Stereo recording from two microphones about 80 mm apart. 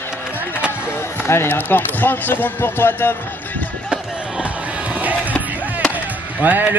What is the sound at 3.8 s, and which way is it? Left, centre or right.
Music, centre.